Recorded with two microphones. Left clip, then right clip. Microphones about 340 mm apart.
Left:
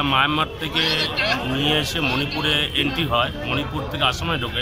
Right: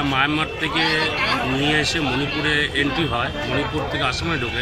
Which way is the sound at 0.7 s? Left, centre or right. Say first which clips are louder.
Right 1 dB; centre.